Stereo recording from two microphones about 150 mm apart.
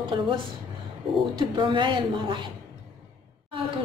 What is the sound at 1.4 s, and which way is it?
Speech, 30° right (ahead or behind).